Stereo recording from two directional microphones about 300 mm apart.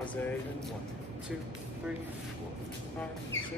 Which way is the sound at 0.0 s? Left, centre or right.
Centre.